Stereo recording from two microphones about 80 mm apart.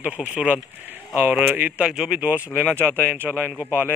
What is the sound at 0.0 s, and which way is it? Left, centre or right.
Speech, centre.